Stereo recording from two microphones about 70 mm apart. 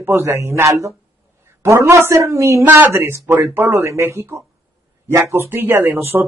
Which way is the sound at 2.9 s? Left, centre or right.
Right.